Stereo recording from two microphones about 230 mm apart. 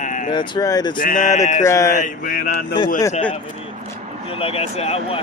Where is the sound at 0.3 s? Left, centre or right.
Centre.